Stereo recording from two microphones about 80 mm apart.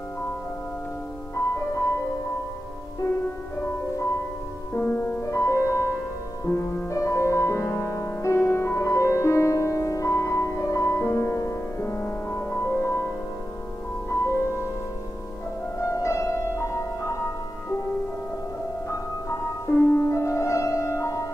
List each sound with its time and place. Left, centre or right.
1.3 s music: left
3.5 s music: left
4.7 s music: left
5.2 s music: left
15.8 s music: left
18.9 s music: left